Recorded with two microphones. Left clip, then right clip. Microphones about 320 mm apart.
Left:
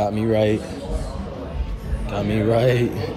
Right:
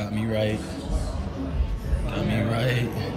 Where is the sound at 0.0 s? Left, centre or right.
Centre.